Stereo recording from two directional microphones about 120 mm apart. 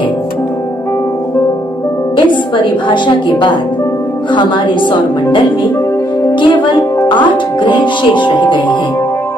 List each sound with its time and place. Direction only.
2.1 s a woman's voice: 45° left (ahead or behind)
6.4 s music: 40° left (ahead or behind)
7.6 s speech: 40° left (ahead or behind)